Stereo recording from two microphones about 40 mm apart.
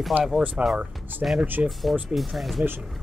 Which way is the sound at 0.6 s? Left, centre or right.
Right.